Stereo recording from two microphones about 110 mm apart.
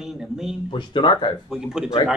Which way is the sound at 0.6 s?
45° left (ahead or behind).